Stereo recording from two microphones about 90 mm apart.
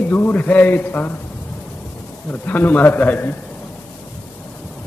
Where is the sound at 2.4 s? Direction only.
20° left (ahead or behind).